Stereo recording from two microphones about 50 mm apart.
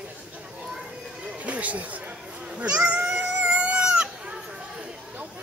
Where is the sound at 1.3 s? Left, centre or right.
Right.